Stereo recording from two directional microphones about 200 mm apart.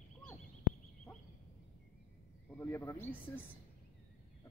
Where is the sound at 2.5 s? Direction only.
10° left (ahead or behind).